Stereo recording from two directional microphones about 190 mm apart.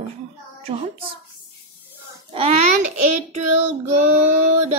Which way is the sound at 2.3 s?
30° right (ahead or behind).